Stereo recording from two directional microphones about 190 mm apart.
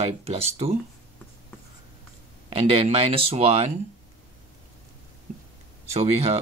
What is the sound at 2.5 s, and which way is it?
Speech, 30° right (ahead or behind).